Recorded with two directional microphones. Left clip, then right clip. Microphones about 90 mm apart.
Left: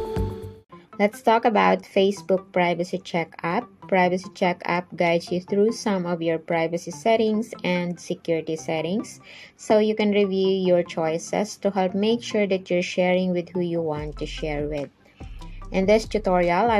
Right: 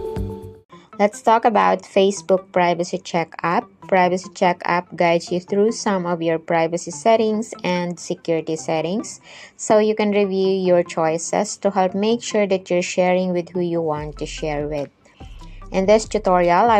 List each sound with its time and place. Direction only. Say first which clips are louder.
0.9 s a woman's voice: right 4 dB; 40° right (ahead or behind)